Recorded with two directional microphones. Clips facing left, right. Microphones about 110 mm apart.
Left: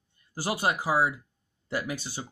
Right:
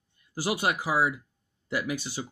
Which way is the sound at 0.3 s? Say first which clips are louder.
Even; 35° left (ahead or behind).